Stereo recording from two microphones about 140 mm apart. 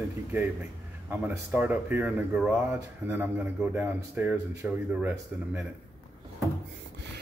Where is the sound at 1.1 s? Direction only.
10° right (ahead or behind).